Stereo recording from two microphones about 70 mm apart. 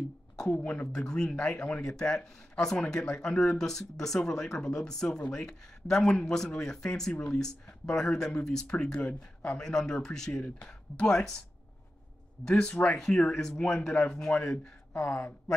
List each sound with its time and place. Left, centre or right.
0.4 s speech: centre
7.3 s speech: centre
12.4 s speech: centre